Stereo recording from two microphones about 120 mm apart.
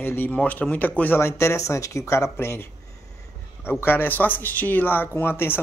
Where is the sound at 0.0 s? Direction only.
15° left (ahead or behind).